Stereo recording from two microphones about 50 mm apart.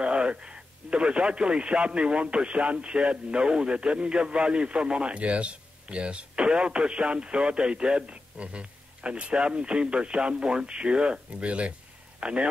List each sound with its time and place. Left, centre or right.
0.0 s speech: right